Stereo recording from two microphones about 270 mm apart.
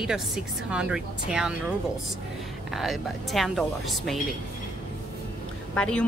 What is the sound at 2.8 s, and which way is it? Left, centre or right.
Speech, centre.